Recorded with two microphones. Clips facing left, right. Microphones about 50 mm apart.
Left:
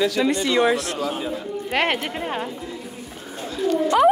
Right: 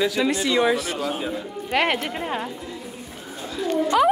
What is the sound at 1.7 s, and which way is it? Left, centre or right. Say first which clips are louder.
Speech: right 1 dB; left.